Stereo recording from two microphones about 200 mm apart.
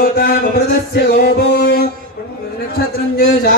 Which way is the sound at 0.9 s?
55° left (ahead or behind).